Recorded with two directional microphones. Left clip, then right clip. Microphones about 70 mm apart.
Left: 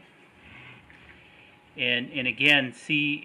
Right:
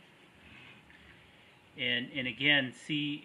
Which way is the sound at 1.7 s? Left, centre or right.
Centre.